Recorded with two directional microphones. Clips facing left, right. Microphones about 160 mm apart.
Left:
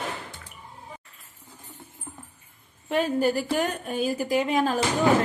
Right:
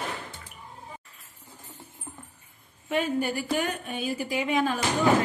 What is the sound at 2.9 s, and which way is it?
A woman's voice, 35° left (ahead or behind).